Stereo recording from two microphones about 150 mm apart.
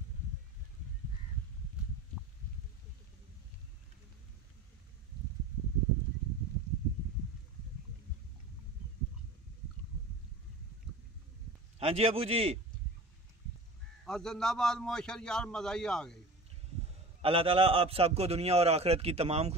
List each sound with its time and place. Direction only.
11.8 s a man's voice: 40° right (ahead or behind)
14.0 s a man's voice: 5° left (ahead or behind)
17.2 s a man's voice: 40° right (ahead or behind)